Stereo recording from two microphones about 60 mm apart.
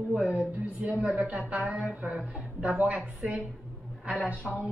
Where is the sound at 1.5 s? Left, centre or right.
Right.